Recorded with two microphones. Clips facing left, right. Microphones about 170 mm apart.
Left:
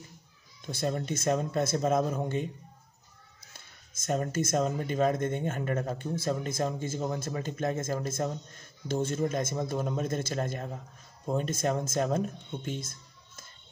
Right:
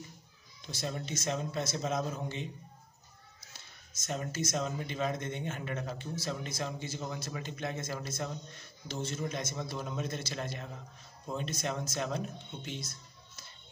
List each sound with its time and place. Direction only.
0.7 s speech: 50° left (ahead or behind)
3.5 s speech: 50° left (ahead or behind)